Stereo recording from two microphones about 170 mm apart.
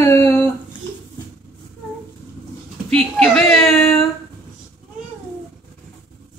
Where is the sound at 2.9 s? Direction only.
Centre (ahead or behind).